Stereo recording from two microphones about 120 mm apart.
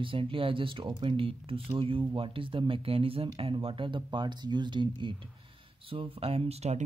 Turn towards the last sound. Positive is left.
turn(degrees=-60)  # may be behind; listen again after turning